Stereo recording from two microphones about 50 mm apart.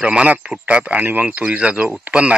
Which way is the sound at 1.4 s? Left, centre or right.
Right.